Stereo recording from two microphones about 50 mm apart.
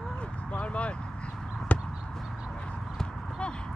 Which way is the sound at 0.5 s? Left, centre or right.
Left.